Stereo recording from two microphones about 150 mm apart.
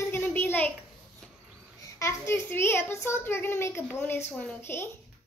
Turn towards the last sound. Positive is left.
turn(degrees=15)  # may be behind; listen again after turning